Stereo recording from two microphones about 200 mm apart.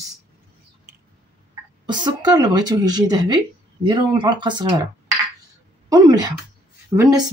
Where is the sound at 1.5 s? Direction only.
20° right (ahead or behind).